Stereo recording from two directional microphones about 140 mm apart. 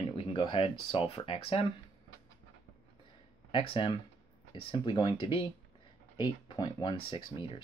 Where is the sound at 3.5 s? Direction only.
40° left (ahead or behind).